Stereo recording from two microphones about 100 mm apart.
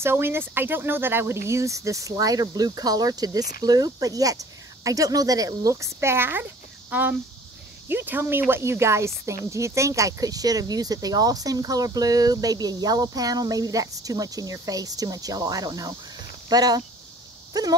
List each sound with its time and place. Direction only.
0.0 s speech: 25° right (ahead or behind); by 17.7 s 40° right (ahead or behind)